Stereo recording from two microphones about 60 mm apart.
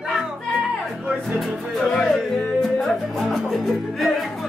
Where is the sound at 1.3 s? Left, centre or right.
Centre.